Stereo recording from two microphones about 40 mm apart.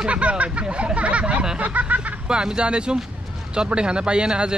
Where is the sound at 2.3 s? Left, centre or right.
Centre.